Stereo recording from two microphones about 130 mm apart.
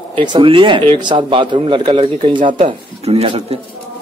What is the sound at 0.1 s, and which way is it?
A woman's voice, 40° right (ahead or behind).